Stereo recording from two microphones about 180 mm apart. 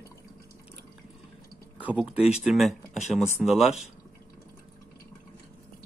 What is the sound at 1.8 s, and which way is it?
Speech, 10° right (ahead or behind).